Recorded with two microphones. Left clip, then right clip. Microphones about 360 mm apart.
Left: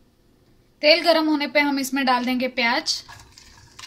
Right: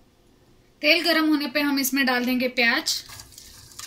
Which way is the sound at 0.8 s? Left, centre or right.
Left.